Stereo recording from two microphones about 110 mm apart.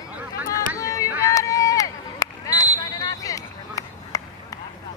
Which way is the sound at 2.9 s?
30° left (ahead or behind).